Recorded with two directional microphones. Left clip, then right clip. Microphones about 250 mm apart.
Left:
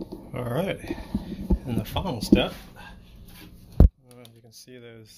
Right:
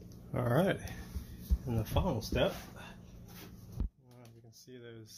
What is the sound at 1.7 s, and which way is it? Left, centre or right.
Speech, left.